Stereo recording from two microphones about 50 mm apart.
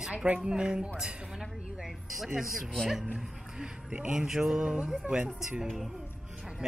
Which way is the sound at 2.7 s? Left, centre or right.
Centre.